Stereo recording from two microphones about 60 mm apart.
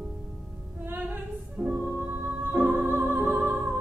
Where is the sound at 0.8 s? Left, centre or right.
Right.